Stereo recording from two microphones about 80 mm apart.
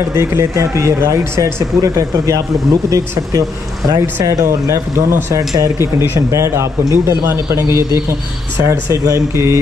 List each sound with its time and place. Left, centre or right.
0.1 s speech: right
8.5 s speech: right